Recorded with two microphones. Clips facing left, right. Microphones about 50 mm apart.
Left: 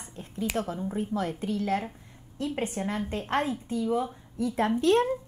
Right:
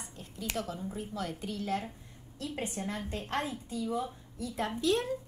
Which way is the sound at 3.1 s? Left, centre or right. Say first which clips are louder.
Left 7 dB; left.